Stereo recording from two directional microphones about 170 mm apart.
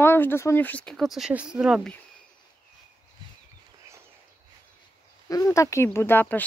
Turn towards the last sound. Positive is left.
turn(degrees=10)  # may be behind; listen again after turning